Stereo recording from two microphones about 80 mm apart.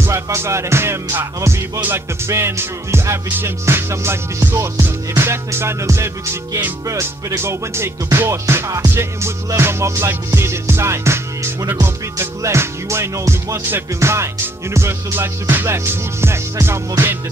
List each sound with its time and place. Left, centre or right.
0.0 s music: right